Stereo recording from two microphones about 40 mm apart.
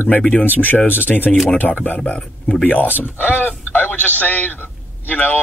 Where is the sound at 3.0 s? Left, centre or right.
Left.